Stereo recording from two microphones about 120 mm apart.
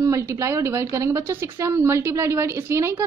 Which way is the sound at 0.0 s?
25° right (ahead or behind).